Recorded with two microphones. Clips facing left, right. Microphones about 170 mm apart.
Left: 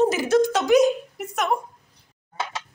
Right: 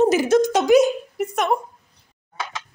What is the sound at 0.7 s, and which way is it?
Speech, centre (ahead or behind).